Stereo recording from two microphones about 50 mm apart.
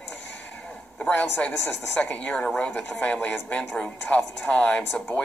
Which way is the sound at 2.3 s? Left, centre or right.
Centre.